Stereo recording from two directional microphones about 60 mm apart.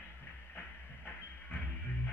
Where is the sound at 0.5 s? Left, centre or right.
Left.